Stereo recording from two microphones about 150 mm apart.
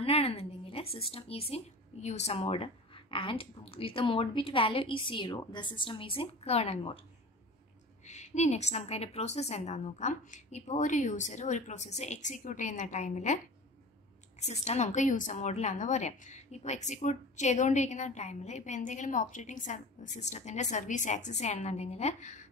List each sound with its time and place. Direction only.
0.0 s speech: 40° left (ahead or behind)
8.0 s a woman's voice: 50° left (ahead or behind)
14.5 s a woman's voice: 50° left (ahead or behind)